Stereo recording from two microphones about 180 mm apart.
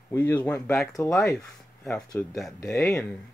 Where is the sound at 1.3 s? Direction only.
Centre (ahead or behind).